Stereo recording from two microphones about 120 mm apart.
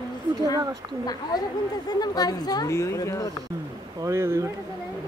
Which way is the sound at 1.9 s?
35° left (ahead or behind).